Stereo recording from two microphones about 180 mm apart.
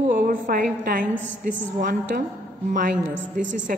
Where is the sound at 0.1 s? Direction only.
50° right (ahead or behind).